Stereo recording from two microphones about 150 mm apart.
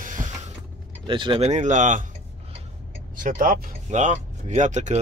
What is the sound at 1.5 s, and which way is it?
Speech, 50° right (ahead or behind).